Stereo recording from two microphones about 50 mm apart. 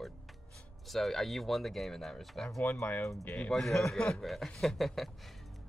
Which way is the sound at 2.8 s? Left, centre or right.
Left.